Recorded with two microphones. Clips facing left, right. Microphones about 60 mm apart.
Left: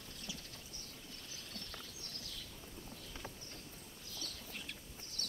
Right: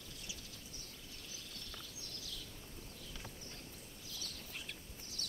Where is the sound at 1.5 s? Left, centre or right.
Left.